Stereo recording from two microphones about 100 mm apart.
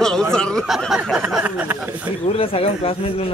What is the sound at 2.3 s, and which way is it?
Speech, 70° left (ahead or behind).